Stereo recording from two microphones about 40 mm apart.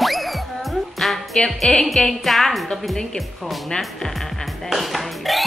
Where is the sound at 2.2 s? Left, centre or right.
Centre.